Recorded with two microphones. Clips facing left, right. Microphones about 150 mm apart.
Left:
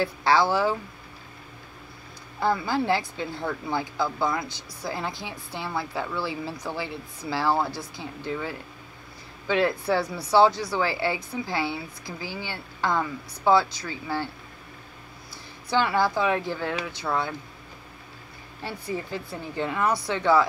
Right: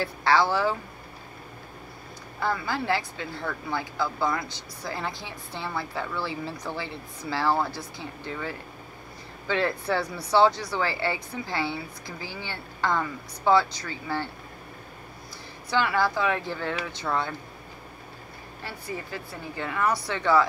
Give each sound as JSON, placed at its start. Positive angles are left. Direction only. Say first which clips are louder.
{"t": 0.0, "sound": "speech", "louder": "left 1 dB", "side_deg": 15}
{"t": 2.4, "sound": "speech", "louder": "left 4 dB", "side_deg": 15}
{"t": 15.7, "sound": "speech", "louder": "left 1 dB", "side_deg": 20}
{"t": 18.6, "sound": "speech", "louder": "left 4 dB", "side_deg": 20}